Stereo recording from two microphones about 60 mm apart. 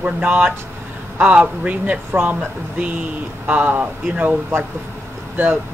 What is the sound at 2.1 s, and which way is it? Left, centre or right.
Speech, right.